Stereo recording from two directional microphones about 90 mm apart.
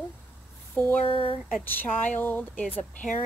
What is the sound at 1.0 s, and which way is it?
Speech, 75° left (ahead or behind).